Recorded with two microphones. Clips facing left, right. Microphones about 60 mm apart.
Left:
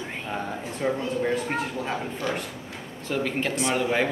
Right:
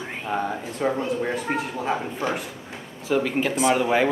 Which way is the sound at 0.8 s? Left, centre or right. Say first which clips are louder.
Right 2 dB; centre.